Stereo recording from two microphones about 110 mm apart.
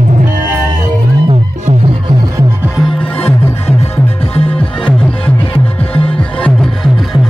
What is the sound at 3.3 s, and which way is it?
Music, 25° left (ahead or behind).